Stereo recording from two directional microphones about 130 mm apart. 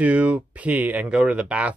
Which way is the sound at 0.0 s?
10° right (ahead or behind).